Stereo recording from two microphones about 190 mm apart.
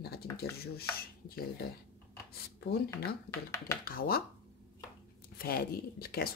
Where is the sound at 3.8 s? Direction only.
50° left (ahead or behind).